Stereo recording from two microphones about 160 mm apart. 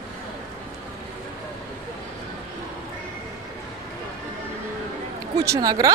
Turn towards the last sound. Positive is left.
turn(degrees=-25)  # may be behind; listen again after turning